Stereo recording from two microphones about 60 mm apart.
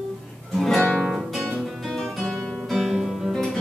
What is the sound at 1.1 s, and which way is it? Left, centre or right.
Music, centre.